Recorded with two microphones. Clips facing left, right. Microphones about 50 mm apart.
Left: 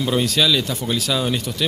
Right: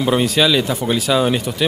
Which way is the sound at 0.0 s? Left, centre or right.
Centre.